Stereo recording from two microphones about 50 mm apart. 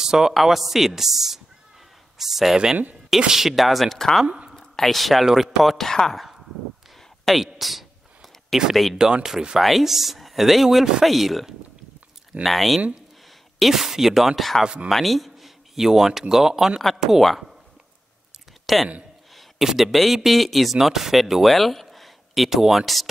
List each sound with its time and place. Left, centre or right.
0.0 s speech: centre
7.2 s a sound: centre
8.9 s speech: centre
9.6 s speech: centre
14.6 s speech: centre
14.9 s speech: centre
18.7 s speech: centre